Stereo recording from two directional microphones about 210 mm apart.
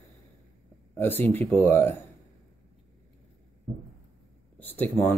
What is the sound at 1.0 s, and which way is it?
Speech, 10° left (ahead or behind).